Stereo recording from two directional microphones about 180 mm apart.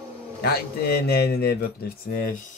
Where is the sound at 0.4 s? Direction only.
60° left (ahead or behind).